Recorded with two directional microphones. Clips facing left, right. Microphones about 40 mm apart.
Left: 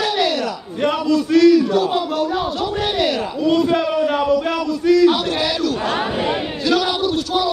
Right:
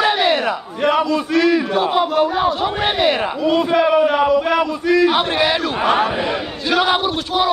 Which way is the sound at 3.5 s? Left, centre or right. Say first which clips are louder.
Right 2 dB; centre.